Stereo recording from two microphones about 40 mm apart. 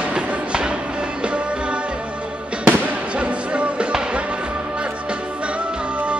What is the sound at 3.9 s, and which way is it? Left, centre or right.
Music, right.